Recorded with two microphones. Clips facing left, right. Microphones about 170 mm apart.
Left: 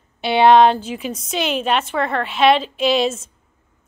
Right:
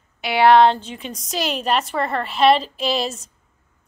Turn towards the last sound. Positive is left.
turn(degrees=0)  # may be behind; listen again after turning